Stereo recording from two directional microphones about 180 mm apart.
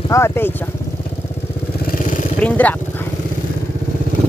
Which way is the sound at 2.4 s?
10° left (ahead or behind).